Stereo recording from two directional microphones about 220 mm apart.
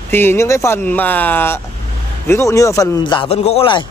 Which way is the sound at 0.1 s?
10° left (ahead or behind).